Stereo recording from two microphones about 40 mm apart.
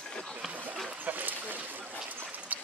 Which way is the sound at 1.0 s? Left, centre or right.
Right.